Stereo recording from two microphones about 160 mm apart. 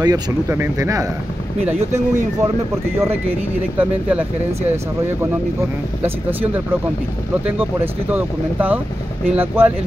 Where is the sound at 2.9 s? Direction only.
15° right (ahead or behind).